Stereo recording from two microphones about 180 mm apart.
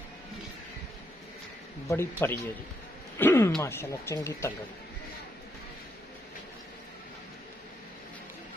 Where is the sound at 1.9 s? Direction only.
15° left (ahead or behind).